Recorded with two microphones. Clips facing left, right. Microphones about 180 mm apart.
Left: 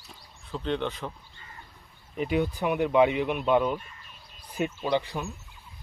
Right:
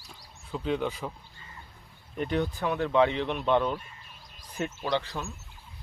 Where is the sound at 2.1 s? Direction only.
5° left (ahead or behind).